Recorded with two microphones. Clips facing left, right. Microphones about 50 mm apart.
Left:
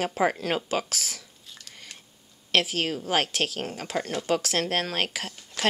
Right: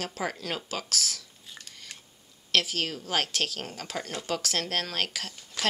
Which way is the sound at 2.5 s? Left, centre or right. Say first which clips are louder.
Left 3 dB; centre.